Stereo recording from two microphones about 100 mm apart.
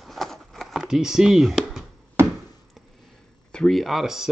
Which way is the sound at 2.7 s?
Centre (ahead or behind).